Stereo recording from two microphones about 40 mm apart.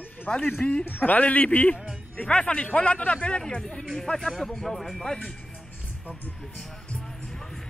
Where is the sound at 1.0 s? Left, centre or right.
Left.